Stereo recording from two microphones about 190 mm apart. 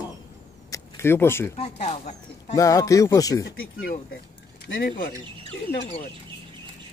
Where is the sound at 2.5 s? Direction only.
15° left (ahead or behind).